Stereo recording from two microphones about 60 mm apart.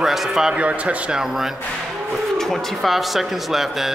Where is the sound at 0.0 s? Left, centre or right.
Centre.